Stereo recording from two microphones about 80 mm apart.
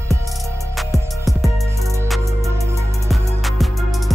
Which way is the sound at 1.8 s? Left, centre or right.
Right.